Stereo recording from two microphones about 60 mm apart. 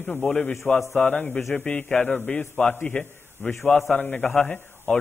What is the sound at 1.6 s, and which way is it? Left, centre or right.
A man's voice, centre.